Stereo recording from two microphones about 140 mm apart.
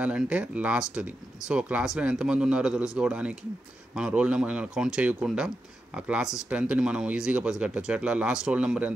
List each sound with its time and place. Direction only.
0.0 s speech: 10° right (ahead or behind)